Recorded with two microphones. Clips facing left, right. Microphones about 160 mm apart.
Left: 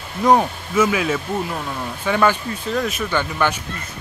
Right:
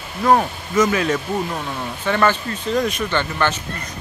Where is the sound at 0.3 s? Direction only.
10° left (ahead or behind).